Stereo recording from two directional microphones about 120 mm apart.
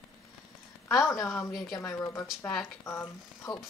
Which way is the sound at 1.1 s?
25° left (ahead or behind).